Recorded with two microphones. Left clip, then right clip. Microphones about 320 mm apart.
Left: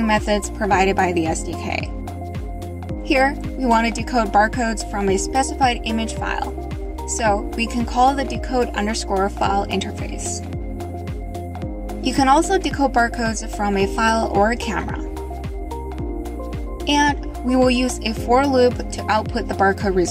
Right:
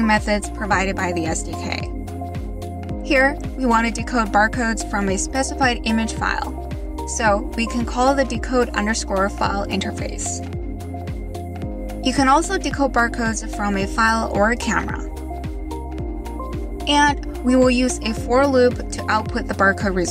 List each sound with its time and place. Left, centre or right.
0.0 s speech: centre
3.1 s speech: centre
12.0 s speech: centre
16.8 s speech: centre